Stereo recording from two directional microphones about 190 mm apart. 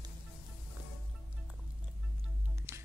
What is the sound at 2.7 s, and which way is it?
Music, 15° right (ahead or behind).